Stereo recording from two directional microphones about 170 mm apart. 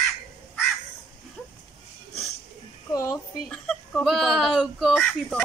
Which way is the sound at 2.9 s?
20° left (ahead or behind).